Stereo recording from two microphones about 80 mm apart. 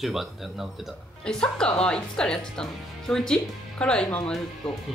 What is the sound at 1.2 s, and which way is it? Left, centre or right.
Speech, centre.